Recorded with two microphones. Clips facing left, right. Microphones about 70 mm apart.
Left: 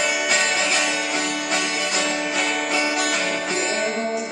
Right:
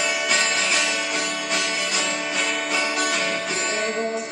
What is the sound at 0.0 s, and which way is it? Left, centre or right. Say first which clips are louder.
Music: left 2 dB; centre.